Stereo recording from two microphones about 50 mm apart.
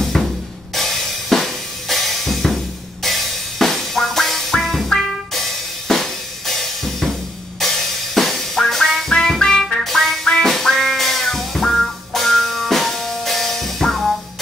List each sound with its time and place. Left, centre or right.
0.1 s drum kit: centre
0.7 s music: centre
5.9 s drum kit: centre
7.6 s music: centre